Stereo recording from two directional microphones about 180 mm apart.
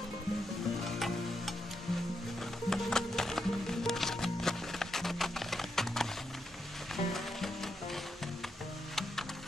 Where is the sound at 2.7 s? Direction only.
Centre (ahead or behind).